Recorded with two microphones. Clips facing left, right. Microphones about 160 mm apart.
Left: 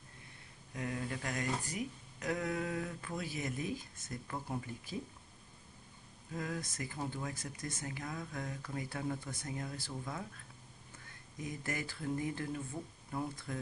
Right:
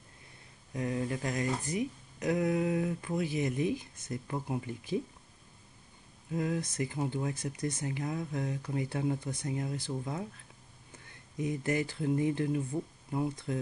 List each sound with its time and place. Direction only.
0.7 s speech: 25° right (ahead or behind)
6.3 s speech: 20° right (ahead or behind)
11.4 s speech: 20° right (ahead or behind)